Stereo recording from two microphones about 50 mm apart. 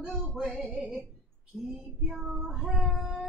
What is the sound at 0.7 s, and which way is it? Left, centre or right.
Music, right.